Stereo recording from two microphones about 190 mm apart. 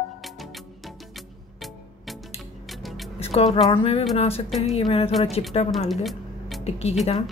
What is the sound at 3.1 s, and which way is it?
Music, 30° left (ahead or behind).